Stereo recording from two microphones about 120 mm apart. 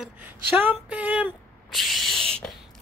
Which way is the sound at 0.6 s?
15° right (ahead or behind).